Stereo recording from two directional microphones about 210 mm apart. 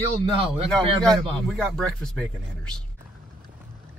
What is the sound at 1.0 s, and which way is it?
Speech, centre (ahead or behind).